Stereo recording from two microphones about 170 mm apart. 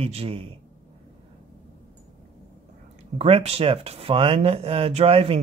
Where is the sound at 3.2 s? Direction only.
35° right (ahead or behind).